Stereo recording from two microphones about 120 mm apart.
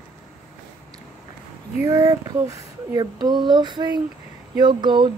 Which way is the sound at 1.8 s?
30° right (ahead or behind).